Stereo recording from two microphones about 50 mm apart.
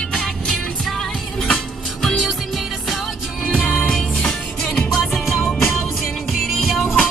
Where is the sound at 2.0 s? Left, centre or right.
Centre.